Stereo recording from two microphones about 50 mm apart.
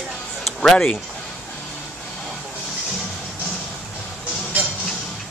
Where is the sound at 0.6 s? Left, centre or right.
Centre.